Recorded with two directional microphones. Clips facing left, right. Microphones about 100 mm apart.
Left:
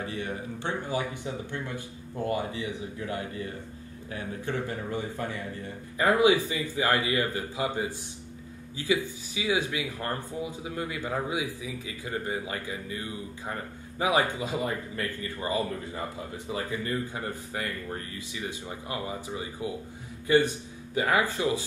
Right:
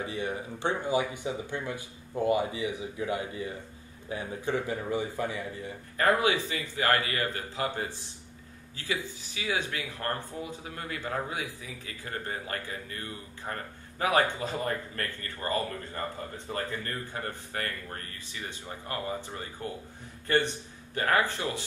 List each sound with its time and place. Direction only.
0.0 s speech: 15° right (ahead or behind)
5.9 s a man's voice: 15° left (ahead or behind)